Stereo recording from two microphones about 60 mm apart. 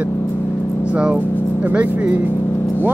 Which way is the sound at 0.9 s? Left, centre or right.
Right.